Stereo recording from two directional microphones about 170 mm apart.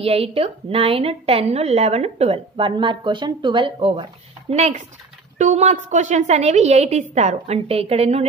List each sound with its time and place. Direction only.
0.0 s a woman's voice: 35° right (ahead or behind)